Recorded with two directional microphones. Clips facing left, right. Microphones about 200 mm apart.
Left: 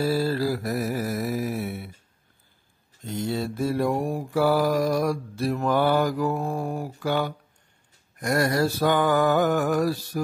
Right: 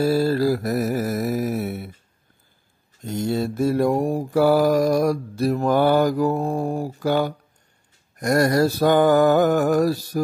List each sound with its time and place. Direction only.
0.0 s music: 45° right (ahead or behind)
3.1 s mantra: 45° right (ahead or behind)